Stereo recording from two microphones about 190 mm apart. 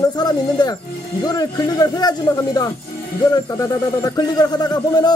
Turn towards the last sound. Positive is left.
turn(degrees=20)  # may be behind; listen again after turning